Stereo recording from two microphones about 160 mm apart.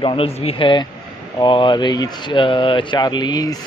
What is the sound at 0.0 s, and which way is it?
A man's voice, 35° left (ahead or behind).